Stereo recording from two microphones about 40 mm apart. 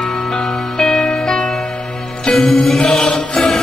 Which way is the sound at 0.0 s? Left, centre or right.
Left.